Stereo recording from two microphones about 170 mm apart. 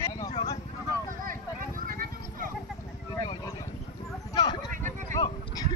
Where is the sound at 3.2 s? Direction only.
30° left (ahead or behind).